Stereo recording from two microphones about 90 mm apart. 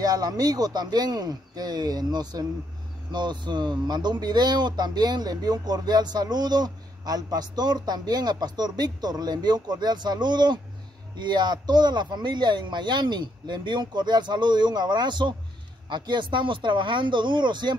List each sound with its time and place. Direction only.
0.0 s speech: 45° right (ahead or behind)